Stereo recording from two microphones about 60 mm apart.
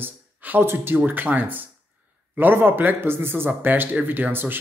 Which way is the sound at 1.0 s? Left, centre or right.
Right.